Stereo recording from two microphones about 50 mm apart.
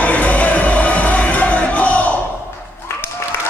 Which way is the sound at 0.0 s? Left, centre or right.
Left.